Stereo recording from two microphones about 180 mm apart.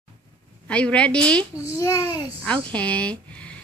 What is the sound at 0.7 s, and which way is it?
Speech, 5° left (ahead or behind).